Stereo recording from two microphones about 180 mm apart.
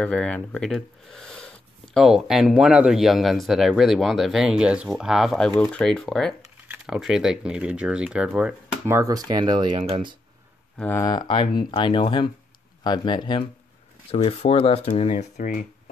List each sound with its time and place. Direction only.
0.0 s speech: 5° left (ahead or behind); by 10.1 s 30° right (ahead or behind)
10.8 s speech: 15° left (ahead or behind); by 15.6 s 45° left (ahead or behind)